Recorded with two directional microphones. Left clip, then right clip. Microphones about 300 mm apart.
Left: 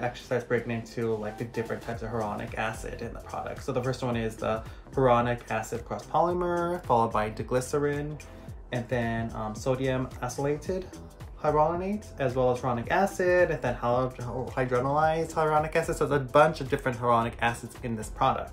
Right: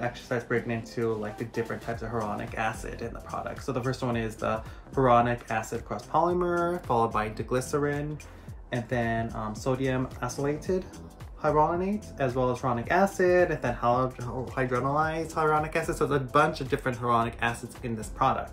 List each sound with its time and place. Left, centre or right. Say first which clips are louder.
0.0 s speech: left 1 dB; centre